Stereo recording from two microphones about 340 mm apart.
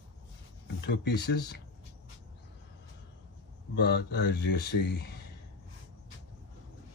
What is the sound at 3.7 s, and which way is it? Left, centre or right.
Speech, left.